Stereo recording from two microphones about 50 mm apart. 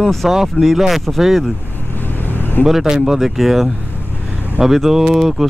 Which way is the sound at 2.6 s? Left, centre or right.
Centre.